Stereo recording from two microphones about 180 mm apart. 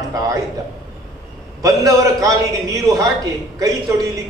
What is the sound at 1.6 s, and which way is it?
A man's voice, 20° right (ahead or behind).